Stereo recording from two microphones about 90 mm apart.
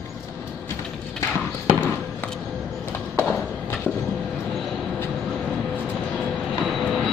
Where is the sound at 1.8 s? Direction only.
15° left (ahead or behind).